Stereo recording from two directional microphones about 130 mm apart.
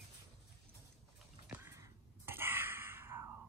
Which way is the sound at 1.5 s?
20° right (ahead or behind).